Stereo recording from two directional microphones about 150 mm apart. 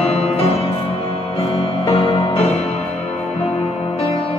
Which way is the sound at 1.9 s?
40° left (ahead or behind).